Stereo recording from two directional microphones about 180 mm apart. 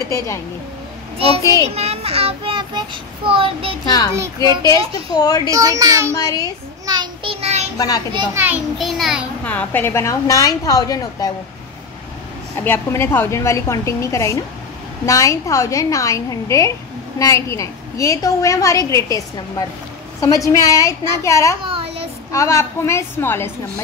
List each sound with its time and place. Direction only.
1.1 s a child's voice: 30° right (ahead or behind)
3.8 s a woman's voice: 20° left (ahead or behind)
4.1 s a child's voice: 20° right (ahead or behind)
5.1 s a woman's voice: 20° left (ahead or behind)
5.5 s a child's voice: 20° right (ahead or behind)
6.1 s a woman's voice: 20° left (ahead or behind)
6.9 s child singing: 25° right (ahead or behind)
7.7 s a child's voice: 20° left (ahead or behind)
8.7 s a child's voice: centre (ahead or behind); by 11.3 s 20° left (ahead or behind)
12.5 s a child's voice: 10° left (ahead or behind)
21.6 s child singing: 30° right (ahead or behind)
22.3 s a child's voice: 15° left (ahead or behind)